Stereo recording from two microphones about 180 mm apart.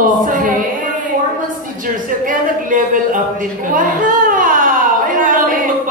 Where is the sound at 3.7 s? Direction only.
50° right (ahead or behind).